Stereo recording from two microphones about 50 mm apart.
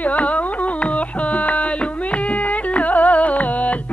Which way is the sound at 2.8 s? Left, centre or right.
Left.